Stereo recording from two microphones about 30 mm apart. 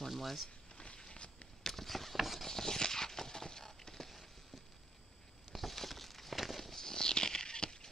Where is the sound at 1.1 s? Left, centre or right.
Left.